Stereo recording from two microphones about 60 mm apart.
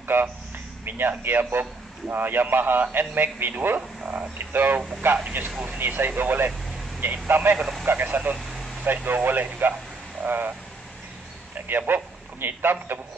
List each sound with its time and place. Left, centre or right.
0.8 s a man's voice: right
4.0 s a sound: right
4.5 s a man's voice: right
11.6 s a man's voice: right